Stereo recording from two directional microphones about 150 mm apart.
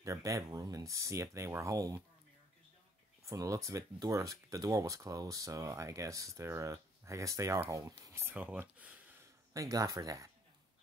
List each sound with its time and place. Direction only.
0.0 s speech: 20° right (ahead or behind)
3.3 s speech: 20° right (ahead or behind)
9.5 s speech: 25° right (ahead or behind)